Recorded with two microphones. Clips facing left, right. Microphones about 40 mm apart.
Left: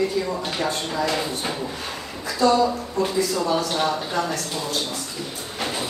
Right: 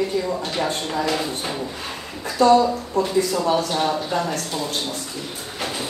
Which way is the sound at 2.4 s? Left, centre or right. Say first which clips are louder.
Right 3 dB; right.